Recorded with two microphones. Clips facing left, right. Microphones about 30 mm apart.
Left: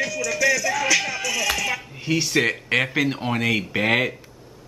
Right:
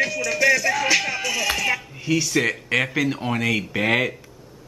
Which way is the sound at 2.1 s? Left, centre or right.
Centre.